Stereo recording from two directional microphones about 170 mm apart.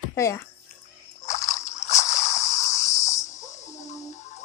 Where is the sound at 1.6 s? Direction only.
40° left (ahead or behind).